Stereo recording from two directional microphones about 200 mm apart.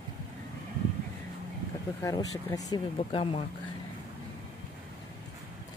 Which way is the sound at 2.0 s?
15° left (ahead or behind).